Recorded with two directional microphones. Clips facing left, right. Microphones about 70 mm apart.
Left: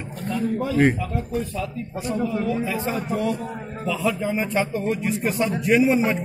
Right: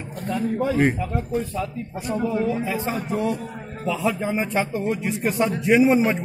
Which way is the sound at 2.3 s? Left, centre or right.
Right.